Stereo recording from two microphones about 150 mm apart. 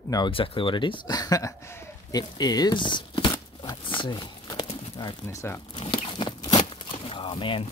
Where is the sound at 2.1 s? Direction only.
25° left (ahead or behind).